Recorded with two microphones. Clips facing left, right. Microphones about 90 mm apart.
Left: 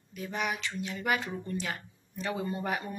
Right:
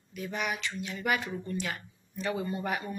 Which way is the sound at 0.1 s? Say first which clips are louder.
Even; 25° left (ahead or behind).